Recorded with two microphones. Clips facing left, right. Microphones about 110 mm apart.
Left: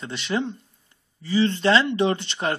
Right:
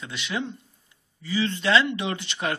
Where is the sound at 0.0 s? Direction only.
40° left (ahead or behind).